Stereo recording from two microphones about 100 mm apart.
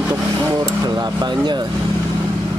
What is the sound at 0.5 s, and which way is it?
Speech, 40° right (ahead or behind).